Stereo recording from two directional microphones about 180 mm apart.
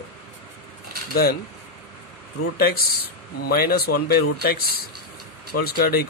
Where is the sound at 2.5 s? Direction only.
55° left (ahead or behind).